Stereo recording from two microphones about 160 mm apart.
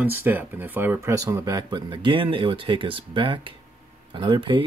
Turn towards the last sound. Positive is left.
turn(degrees=-30)  # may be behind; listen again after turning